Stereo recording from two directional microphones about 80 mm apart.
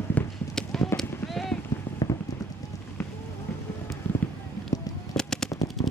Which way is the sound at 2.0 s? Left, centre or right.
Left.